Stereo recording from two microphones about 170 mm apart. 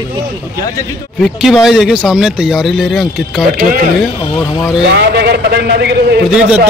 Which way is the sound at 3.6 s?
55° right (ahead or behind).